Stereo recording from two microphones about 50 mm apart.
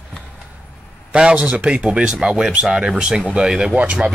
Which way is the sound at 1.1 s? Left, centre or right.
Centre.